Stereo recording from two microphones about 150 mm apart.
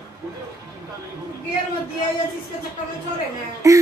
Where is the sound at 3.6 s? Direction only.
20° right (ahead or behind).